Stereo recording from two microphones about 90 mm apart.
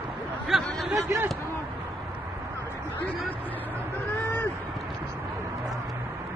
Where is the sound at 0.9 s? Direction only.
30° right (ahead or behind).